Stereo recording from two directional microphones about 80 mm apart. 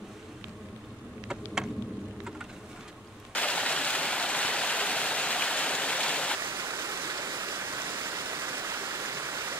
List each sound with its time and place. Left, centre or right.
1.3 s insect: centre
3.3 s waterfall: centre
6.4 s stream: right